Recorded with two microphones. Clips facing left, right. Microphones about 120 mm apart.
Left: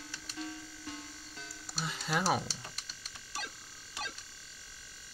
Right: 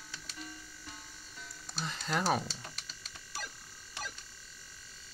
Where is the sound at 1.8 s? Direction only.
5° left (ahead or behind).